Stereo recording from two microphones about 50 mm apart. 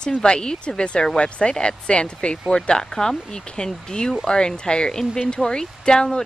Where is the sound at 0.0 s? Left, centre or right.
Centre.